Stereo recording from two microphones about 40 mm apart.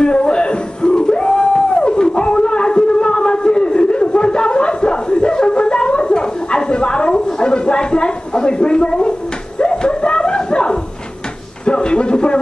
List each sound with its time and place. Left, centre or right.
0.0 s music: left
9.6 s dog: left
11.6 s a sound: left